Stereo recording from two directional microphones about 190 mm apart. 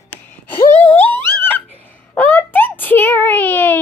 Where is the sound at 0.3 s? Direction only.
10° left (ahead or behind).